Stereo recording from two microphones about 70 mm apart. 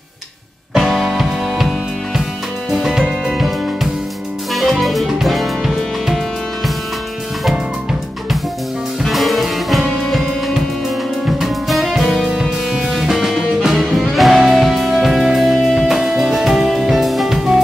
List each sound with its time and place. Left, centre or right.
0.7 s music: centre
9.0 s music: centre
13.7 s music: centre